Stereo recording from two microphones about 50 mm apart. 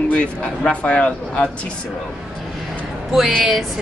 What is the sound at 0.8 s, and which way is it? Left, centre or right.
Speech, left.